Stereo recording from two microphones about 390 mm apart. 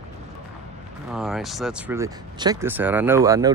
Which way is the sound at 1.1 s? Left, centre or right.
Centre.